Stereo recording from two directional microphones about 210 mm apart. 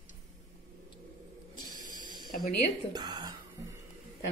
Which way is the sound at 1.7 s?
40° right (ahead or behind).